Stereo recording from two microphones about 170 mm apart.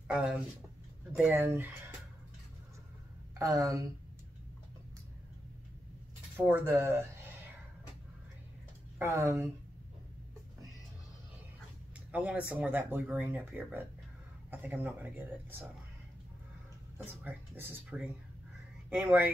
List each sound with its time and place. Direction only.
0.1 s speech: 5° right (ahead or behind)
3.3 s speech: 20° right (ahead or behind)
6.3 s speech: 15° right (ahead or behind)
8.9 s speech: 15° right (ahead or behind)
12.1 s speech: 5° right (ahead or behind)
17.0 s speech: 10° right (ahead or behind)